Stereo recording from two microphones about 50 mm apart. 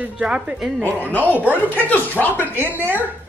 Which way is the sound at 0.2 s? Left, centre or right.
Centre.